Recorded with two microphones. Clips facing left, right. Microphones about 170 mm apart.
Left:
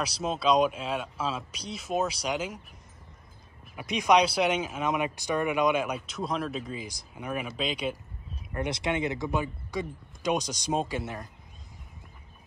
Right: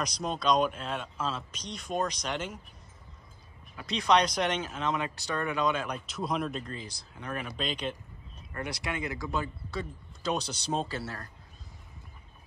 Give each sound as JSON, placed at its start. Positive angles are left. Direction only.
{"t": 0.0, "sound": "speech", "side_deg": 5}
{"t": 3.7, "sound": "speech", "side_deg": 15}
{"t": 8.5, "sound": "speech", "side_deg": 20}